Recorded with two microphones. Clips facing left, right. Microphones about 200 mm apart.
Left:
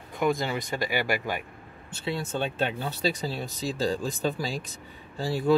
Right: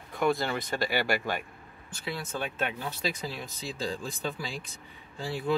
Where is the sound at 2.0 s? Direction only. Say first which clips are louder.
Left 5 dB; 30° left (ahead or behind).